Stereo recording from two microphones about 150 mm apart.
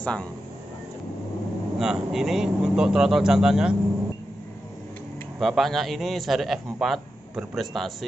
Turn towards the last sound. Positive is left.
turn(degrees=0)  # may be behind; listen again after turning